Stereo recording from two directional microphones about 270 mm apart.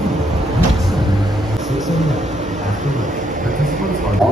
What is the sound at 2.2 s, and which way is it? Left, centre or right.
Speech, right.